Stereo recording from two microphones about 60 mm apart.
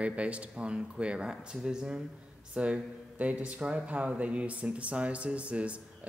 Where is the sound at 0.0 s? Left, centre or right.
Right.